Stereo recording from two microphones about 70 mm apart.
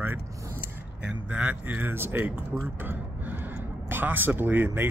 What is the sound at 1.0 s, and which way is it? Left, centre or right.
Speech, centre.